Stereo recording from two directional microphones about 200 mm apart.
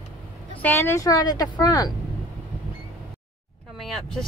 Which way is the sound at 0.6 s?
10° left (ahead or behind).